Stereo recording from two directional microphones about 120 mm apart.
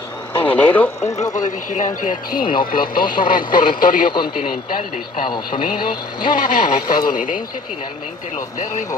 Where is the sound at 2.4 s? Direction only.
40° left (ahead or behind).